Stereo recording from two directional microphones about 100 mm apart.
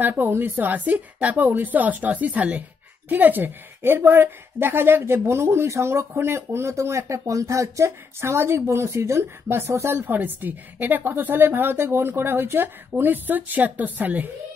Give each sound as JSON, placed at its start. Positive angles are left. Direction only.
{"t": 0.0, "sound": "a woman's voice", "side_deg": -20}